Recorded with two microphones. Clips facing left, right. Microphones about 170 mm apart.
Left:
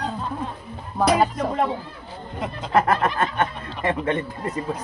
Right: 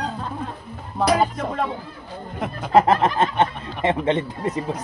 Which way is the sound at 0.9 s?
Centre (ahead or behind).